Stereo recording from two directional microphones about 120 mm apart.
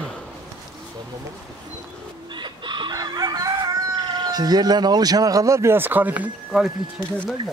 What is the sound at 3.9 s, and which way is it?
Speech, 35° right (ahead or behind).